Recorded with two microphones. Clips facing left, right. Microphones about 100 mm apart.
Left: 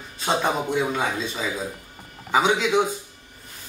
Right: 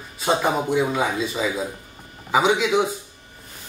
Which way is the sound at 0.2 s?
5° right (ahead or behind).